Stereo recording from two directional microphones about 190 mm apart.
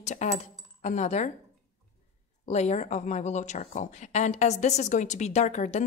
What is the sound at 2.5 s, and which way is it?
A woman's voice, 35° left (ahead or behind).